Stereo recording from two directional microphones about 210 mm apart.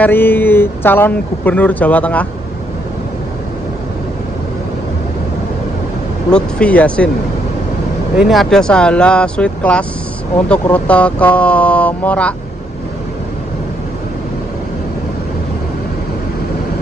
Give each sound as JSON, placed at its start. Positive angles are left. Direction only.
{"t": 0.0, "sound": "speech", "side_deg": 10}
{"t": 6.3, "sound": "speech", "side_deg": 5}
{"t": 8.2, "sound": "speech", "side_deg": 0}